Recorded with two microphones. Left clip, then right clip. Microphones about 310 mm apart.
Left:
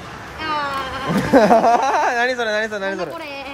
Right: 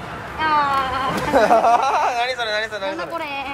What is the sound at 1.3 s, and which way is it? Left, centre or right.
Speech, left.